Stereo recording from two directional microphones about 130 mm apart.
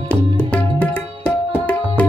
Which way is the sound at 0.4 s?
15° left (ahead or behind).